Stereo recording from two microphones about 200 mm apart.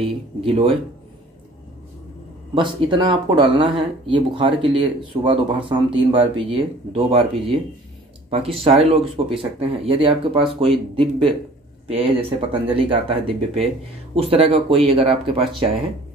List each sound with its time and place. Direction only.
0.0 s speech: 30° right (ahead or behind)
2.5 s speech: 25° right (ahead or behind)